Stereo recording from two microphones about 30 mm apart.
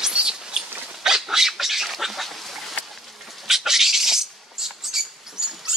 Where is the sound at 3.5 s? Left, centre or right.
Centre.